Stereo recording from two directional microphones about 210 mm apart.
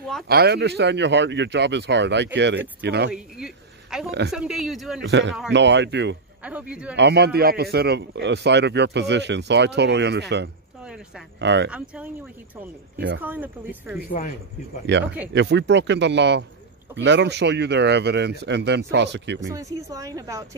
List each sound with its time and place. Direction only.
0.3 s speech: 50° right (ahead or behind)
3.1 s speech: 5° right (ahead or behind)
5.0 s speech: 55° right (ahead or behind)
6.4 s a woman's voice: 5° right (ahead or behind)
7.0 s speech: 50° right (ahead or behind)
10.8 s oink: 5° right (ahead or behind)
11.3 s speech: 55° right (ahead or behind)
11.7 s speech: 5° right (ahead or behind)
13.2 s a woman's voice: 10° right (ahead or behind)
13.9 s speech: 40° left (ahead or behind)
14.9 s speech: 55° right (ahead or behind)
19.5 s a woman's voice: 15° right (ahead or behind)